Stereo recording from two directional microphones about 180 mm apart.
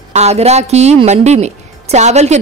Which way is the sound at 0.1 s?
35° right (ahead or behind).